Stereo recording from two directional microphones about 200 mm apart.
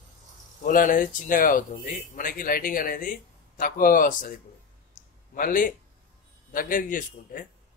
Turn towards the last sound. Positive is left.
turn(degrees=40)  # may be behind; listen again after turning